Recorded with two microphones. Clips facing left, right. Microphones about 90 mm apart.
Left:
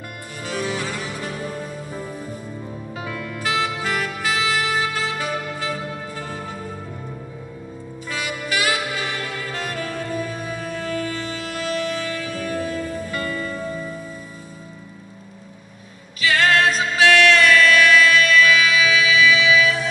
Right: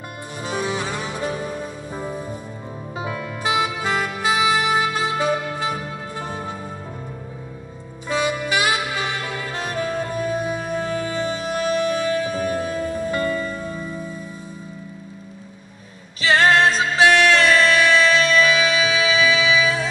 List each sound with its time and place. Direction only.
0.4 s music: 20° right (ahead or behind)
2.9 s saxophone: 25° right (ahead or behind)
8.1 s saxophone: 20° right (ahead or behind)
16.2 s music: 30° right (ahead or behind)